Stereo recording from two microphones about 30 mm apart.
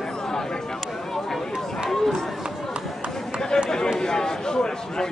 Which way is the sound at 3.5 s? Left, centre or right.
Left.